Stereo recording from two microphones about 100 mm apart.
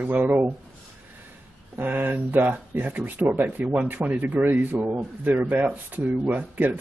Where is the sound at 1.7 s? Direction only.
20° right (ahead or behind).